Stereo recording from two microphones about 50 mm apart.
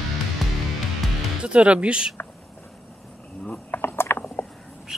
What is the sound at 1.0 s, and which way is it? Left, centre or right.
Music, centre.